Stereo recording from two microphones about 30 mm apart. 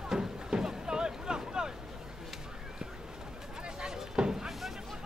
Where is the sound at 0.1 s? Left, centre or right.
Right.